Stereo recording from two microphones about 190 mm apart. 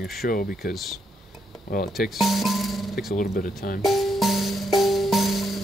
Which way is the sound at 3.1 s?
50° left (ahead or behind).